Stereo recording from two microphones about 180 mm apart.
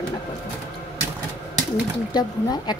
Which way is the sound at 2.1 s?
20° left (ahead or behind).